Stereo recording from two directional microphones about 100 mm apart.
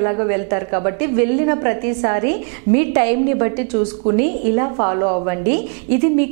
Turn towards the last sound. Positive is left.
turn(degrees=-15)  # may be behind; listen again after turning